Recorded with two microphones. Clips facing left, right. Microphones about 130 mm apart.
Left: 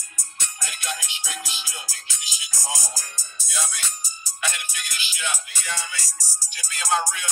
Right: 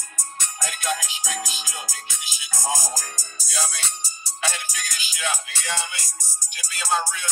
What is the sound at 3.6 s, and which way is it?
Music, 30° right (ahead or behind).